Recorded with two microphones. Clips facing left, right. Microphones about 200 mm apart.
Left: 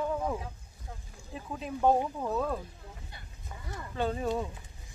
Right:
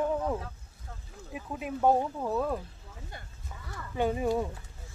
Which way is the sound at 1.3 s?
10° right (ahead or behind).